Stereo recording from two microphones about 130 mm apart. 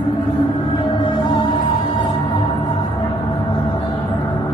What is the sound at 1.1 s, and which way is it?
Music, 35° left (ahead or behind).